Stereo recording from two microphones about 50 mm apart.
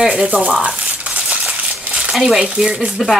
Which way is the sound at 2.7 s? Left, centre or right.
Right.